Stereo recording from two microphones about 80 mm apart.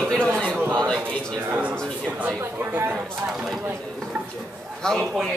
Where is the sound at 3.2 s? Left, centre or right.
Centre.